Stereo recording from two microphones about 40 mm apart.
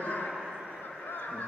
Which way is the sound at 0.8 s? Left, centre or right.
Left.